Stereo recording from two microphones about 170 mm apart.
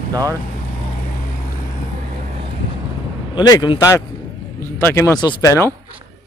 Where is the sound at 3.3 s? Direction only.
25° left (ahead or behind).